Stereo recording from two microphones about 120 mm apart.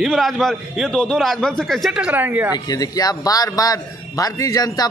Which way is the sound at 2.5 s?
30° left (ahead or behind).